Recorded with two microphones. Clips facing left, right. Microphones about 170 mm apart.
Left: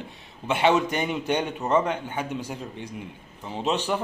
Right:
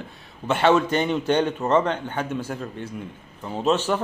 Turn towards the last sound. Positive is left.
turn(degrees=15)  # may be behind; listen again after turning